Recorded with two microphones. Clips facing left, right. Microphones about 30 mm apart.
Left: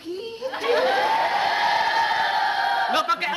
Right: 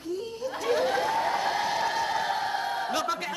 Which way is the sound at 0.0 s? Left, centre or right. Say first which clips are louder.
Left 2 dB; left.